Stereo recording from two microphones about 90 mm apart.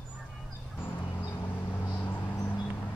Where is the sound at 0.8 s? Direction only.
25° left (ahead or behind).